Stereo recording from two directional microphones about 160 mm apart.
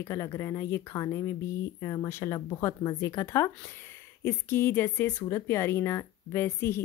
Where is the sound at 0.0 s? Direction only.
20° left (ahead or behind).